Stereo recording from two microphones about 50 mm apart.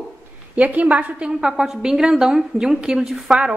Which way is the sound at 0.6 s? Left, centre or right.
Right.